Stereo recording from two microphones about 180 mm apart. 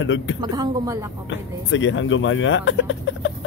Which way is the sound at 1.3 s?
90° left.